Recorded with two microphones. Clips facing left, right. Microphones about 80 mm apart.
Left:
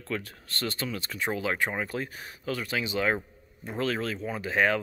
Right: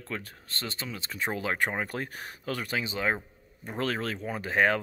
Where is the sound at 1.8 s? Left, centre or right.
Right.